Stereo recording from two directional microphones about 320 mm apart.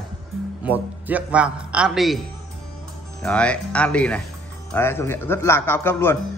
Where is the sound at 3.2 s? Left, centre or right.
Centre.